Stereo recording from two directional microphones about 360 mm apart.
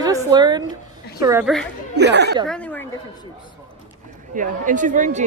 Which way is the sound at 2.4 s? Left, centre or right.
Centre.